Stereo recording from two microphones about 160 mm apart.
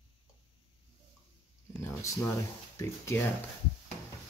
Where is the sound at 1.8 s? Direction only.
15° left (ahead or behind).